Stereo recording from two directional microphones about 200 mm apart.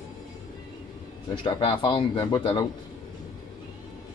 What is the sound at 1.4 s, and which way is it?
A man's voice, 25° left (ahead or behind).